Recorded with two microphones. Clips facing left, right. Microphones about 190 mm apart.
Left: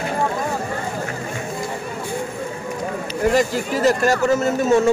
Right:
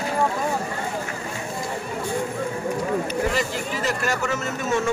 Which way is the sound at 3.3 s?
40° left (ahead or behind).